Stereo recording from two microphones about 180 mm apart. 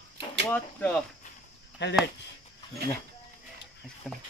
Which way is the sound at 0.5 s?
10° left (ahead or behind).